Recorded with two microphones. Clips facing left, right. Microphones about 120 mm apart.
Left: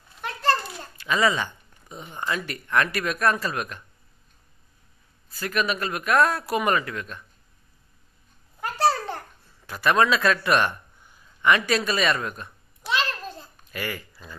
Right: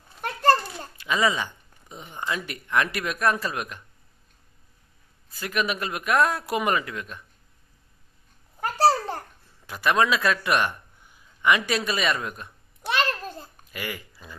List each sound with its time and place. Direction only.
0.2 s a sound: 45° right (ahead or behind)
0.7 s speech: 15° right (ahead or behind)
5.3 s speech: 15° right (ahead or behind)
9.7 s speech: 10° right (ahead or behind)
12.8 s babbling: 50° right (ahead or behind)
13.7 s speech: 15° right (ahead or behind)